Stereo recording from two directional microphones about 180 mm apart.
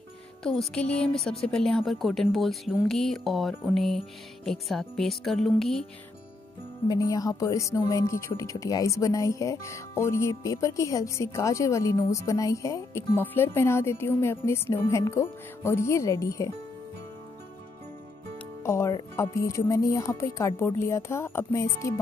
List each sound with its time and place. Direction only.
0.4 s speech: 5° left (ahead or behind)
6.9 s speech: 20° left (ahead or behind)
18.6 s speech: 15° left (ahead or behind)